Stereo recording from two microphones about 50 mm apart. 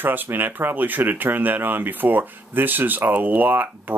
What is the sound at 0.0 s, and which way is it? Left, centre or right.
Speech, right.